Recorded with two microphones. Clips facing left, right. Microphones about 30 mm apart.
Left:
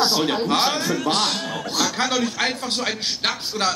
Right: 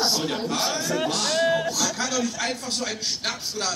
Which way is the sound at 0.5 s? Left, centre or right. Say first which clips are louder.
Left 5 dB; left.